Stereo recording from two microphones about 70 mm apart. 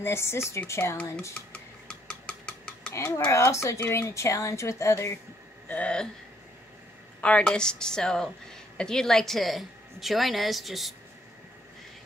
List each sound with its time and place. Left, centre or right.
0.0 s speech: left
1.5 s a sound: centre
3.3 s a woman's voice: left
5.7 s speech: centre
7.2 s a woman's voice: centre